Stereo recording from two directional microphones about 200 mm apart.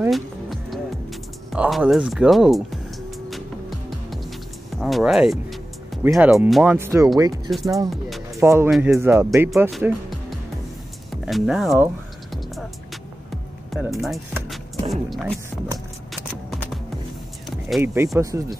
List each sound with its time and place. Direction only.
0.1 s music: centre (ahead or behind)
1.5 s speech: 5° right (ahead or behind)
3.3 s music: centre (ahead or behind)
4.6 s speech: centre (ahead or behind)
8.6 s speech: centre (ahead or behind)
9.0 s speech: 10° right (ahead or behind)
9.7 s speech: centre (ahead or behind)
11.2 s speech: centre (ahead or behind)
13.7 s music: centre (ahead or behind)
14.5 s a sound: centre (ahead or behind)
16.4 s music: centre (ahead or behind)
17.5 s power windows: centre (ahead or behind)
17.9 s speech: 15° right (ahead or behind)